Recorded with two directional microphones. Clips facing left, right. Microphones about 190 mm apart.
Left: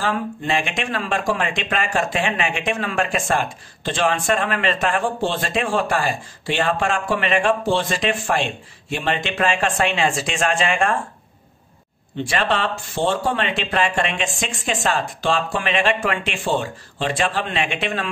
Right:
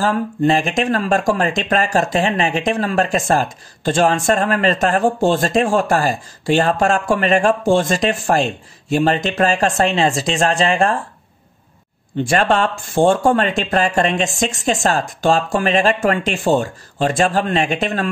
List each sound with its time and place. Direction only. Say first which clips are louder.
0.0 s speech: right 7 dB; 40° right (ahead or behind)
12.2 s speech: right 6 dB; 45° right (ahead or behind)